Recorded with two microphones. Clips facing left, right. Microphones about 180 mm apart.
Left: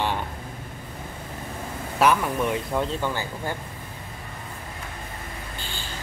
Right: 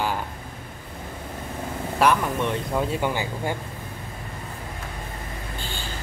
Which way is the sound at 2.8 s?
15° right (ahead or behind).